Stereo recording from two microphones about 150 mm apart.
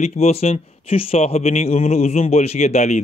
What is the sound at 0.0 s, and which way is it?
A man's voice, 45° left (ahead or behind).